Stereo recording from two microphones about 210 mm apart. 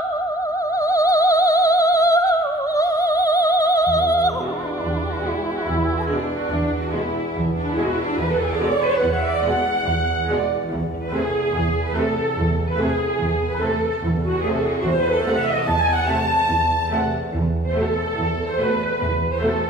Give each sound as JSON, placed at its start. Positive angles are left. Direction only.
{"t": 0.7, "sound": "music", "side_deg": 15}